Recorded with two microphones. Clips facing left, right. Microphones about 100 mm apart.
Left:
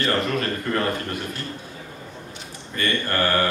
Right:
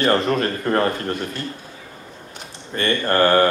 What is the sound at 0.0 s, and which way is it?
Speech, 35° right (ahead or behind).